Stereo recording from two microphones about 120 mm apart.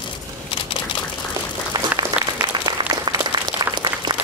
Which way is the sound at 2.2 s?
10° right (ahead or behind).